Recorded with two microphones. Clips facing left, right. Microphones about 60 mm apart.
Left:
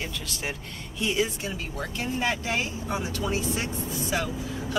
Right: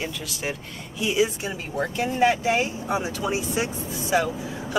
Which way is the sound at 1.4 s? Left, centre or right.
Right.